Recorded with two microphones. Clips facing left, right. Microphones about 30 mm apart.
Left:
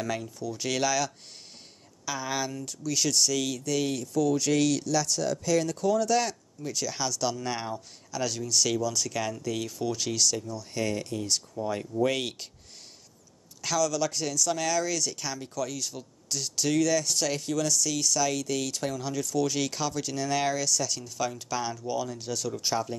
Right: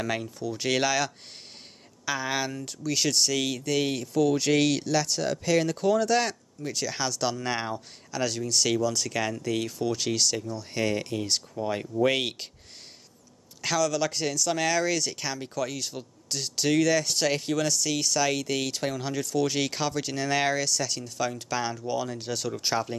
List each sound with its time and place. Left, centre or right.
0.0 s speech: right
13.6 s speech: right